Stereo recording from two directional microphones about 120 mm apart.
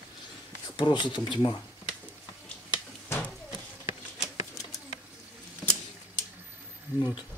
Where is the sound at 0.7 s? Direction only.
40° left (ahead or behind).